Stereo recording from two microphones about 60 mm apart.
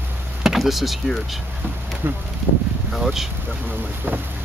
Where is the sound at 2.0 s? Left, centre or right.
Right.